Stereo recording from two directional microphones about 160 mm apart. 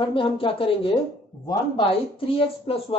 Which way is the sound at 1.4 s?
25° left (ahead or behind).